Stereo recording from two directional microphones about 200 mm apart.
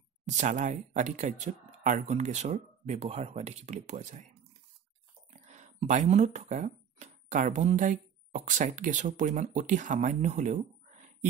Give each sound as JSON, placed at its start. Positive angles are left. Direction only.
{"t": 0.3, "sound": "speech", "side_deg": -40}
{"t": 5.3, "sound": "speech", "side_deg": -35}